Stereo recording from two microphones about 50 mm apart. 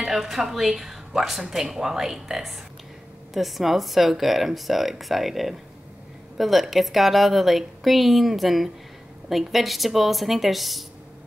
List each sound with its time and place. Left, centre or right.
0.0 s speech: centre